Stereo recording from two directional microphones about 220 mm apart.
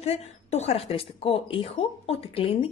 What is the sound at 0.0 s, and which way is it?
Speech, 30° left (ahead or behind).